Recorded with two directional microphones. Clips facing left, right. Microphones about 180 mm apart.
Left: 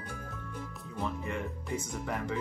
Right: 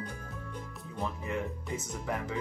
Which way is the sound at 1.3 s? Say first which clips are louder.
Right 1 dB; centre (ahead or behind).